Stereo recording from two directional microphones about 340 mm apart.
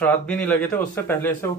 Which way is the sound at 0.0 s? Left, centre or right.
Centre.